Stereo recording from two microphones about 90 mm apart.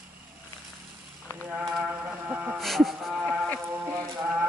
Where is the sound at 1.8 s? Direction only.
15° right (ahead or behind).